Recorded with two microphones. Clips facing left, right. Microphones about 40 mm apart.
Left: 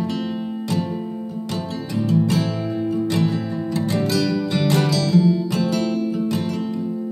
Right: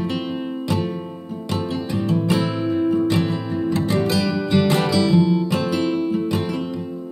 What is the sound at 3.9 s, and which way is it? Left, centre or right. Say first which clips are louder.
Music: left 3 dB; right.